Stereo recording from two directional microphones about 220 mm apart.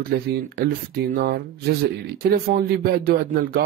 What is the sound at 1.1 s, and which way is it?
Speech, 45° right (ahead or behind).